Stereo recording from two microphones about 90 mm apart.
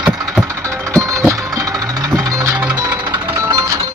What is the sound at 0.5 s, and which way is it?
Music, 30° right (ahead or behind).